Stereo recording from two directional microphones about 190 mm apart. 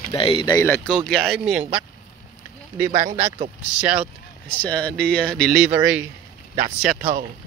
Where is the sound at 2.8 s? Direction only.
35° right (ahead or behind).